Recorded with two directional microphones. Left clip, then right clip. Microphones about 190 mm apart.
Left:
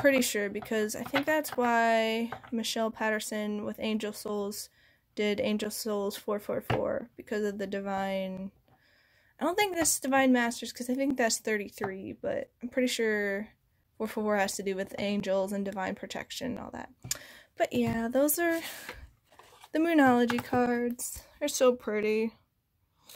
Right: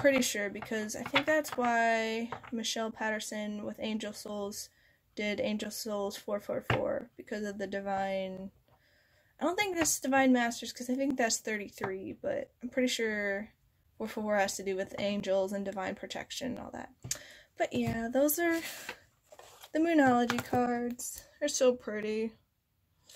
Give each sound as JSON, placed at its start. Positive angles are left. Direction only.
{"t": 0.0, "sound": "speech", "side_deg": 35}
{"t": 9.4, "sound": "speech", "side_deg": 35}
{"t": 19.7, "sound": "speech", "side_deg": 35}